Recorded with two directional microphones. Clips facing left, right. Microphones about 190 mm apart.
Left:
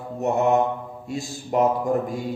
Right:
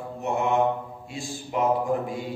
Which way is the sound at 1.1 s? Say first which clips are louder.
Left 6 dB; 40° left (ahead or behind).